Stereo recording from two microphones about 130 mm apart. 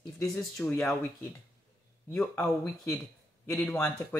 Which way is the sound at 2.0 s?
20° left (ahead or behind).